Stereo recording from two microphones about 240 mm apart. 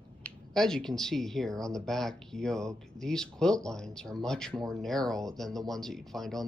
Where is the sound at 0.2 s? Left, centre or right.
Centre.